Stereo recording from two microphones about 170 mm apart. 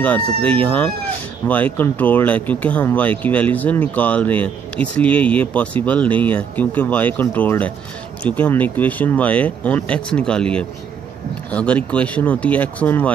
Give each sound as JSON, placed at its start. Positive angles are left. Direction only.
{"t": 0.4, "sound": "speech", "side_deg": -30}
{"t": 0.7, "sound": "speech", "side_deg": 5}